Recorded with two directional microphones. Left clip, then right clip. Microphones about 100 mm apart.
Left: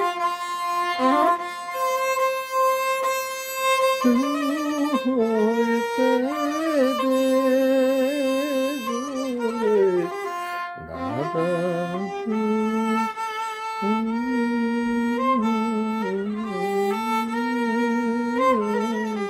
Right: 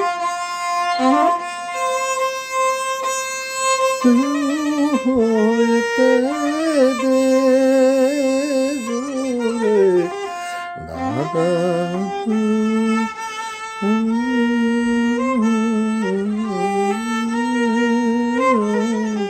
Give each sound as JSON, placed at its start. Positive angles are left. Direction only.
{"t": 0.8, "sound": "music", "side_deg": 10}
{"t": 3.6, "sound": "violin", "side_deg": 10}
{"t": 5.0, "sound": "music", "side_deg": -40}
{"t": 5.3, "sound": "music", "side_deg": 5}
{"t": 6.6, "sound": "music", "side_deg": -45}
{"t": 9.7, "sound": "music", "side_deg": -40}
{"t": 11.5, "sound": "music", "side_deg": -55}
{"t": 12.4, "sound": "music", "side_deg": 15}
{"t": 15.1, "sound": "saxophone", "side_deg": 10}
{"t": 17.1, "sound": "music", "side_deg": 10}